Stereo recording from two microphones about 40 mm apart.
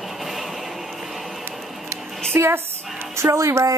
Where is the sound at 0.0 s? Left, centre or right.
Centre.